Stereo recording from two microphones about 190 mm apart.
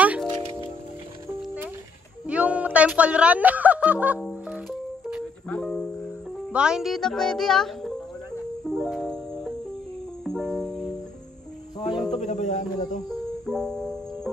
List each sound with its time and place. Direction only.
0.0 s music: 5° right (ahead or behind)
2.2 s speech: 5° right (ahead or behind)
4.3 s music: centre (ahead or behind)
6.5 s a child's voice: 5° right (ahead or behind)
8.6 s music: centre (ahead or behind)
11.9 s music: centre (ahead or behind)
12.2 s music: 40° left (ahead or behind)
13.5 s music: centre (ahead or behind)